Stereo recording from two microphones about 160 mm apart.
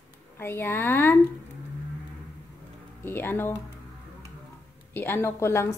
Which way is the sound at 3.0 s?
15° left (ahead or behind).